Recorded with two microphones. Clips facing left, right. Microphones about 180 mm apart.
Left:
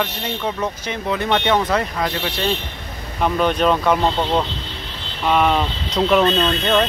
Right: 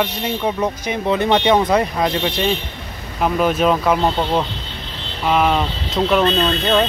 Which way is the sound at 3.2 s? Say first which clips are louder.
Right 1 dB; 5° right (ahead or behind).